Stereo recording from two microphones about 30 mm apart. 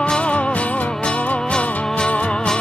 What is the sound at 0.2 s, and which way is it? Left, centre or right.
Music, left.